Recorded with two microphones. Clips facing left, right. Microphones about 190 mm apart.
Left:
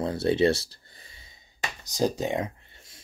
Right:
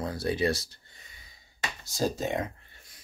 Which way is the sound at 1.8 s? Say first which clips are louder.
Left 3 dB; 15° left (ahead or behind).